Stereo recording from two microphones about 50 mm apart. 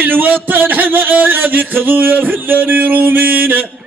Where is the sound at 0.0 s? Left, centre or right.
Right.